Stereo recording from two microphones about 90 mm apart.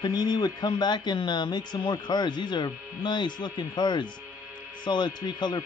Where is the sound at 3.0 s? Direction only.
55° left (ahead or behind).